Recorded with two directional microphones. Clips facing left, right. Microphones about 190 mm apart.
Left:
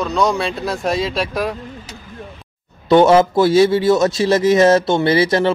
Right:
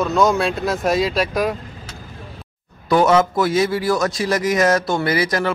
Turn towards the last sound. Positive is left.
turn(degrees=25)  # may be behind; listen again after turning